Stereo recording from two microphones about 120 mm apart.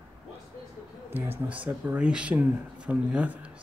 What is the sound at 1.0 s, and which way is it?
Speech, 15° right (ahead or behind).